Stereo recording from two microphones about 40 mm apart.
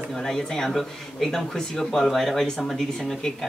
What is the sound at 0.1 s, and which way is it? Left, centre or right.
Speech, centre.